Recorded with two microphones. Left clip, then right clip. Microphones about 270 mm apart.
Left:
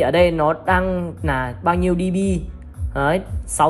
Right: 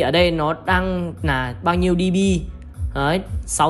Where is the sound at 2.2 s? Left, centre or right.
Centre.